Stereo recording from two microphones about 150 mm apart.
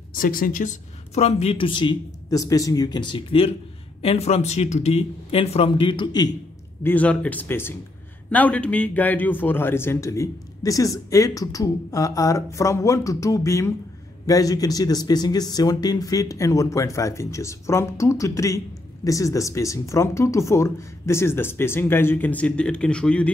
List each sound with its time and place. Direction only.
0.2 s speech: 70° left (ahead or behind)
1.1 s speech: 45° left (ahead or behind); by 6.3 s 30° left (ahead or behind)
6.8 s speech: 10° left (ahead or behind)